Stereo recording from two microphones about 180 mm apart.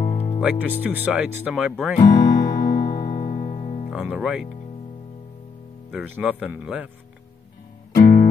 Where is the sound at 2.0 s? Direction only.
20° left (ahead or behind).